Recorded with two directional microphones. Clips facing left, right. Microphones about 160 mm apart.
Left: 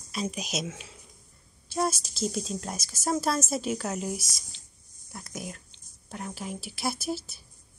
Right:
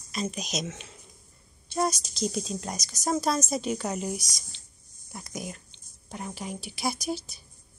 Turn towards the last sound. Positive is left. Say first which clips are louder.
# even
turn(degrees=5)  # may be behind; listen again after turning